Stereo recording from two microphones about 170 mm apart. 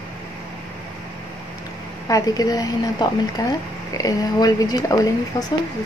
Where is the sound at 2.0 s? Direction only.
20° left (ahead or behind).